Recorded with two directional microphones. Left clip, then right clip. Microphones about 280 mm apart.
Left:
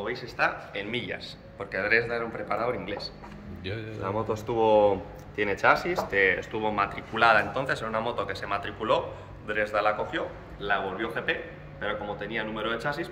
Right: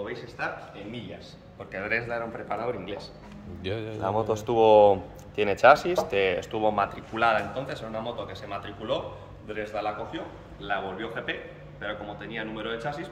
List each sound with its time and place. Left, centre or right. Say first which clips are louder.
0.4 s speech: left 6 dB; centre
1.7 s speech: left 4 dB; centre
4.0 s speech: right 3 dB; right
7.2 s speech: left 3 dB; centre